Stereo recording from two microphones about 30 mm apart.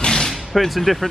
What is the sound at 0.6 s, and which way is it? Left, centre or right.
Speech, centre.